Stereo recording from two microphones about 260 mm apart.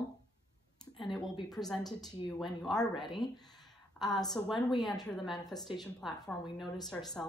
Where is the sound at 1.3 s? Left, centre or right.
Centre.